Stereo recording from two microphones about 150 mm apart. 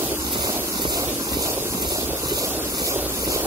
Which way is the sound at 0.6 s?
25° right (ahead or behind).